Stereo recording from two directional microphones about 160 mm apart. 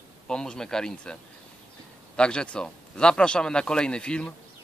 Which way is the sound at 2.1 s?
5° left (ahead or behind).